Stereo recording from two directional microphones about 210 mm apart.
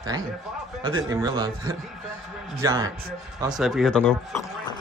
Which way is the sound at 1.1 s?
20° right (ahead or behind).